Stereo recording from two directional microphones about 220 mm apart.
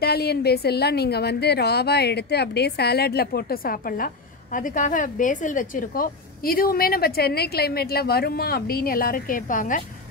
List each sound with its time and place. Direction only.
0.0 s a woman's voice: 45° left (ahead or behind)